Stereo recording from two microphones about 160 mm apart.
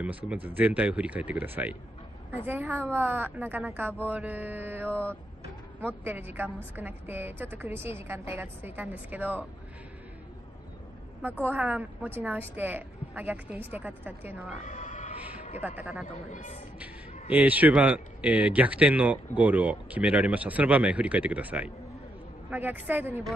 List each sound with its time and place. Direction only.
0.0 s a man's voice: 5° right (ahead or behind)
11.4 s a man's voice: 10° right (ahead or behind)
14.6 s a sound: 50° left (ahead or behind)
15.6 s a man's voice: 10° right (ahead or behind)
16.3 s speech: 50° left (ahead or behind)
16.8 s a man's voice: 10° right (ahead or behind)